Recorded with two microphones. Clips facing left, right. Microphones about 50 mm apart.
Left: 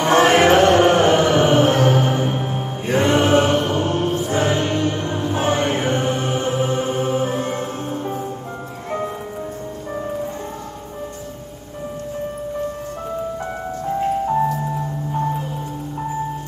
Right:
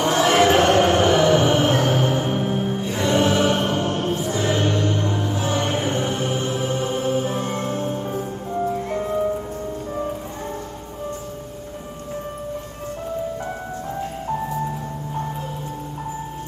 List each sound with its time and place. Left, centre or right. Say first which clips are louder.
0.0 s music: left 3 dB; left